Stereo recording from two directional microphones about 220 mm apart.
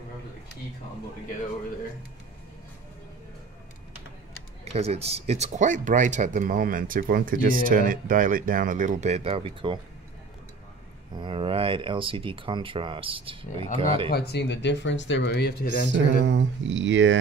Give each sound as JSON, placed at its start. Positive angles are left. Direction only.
{"t": 4.7, "sound": "speech", "side_deg": -30}
{"t": 11.1, "sound": "speech", "side_deg": -25}
{"t": 14.1, "sound": "speech", "side_deg": 50}
{"t": 15.9, "sound": "speech", "side_deg": -55}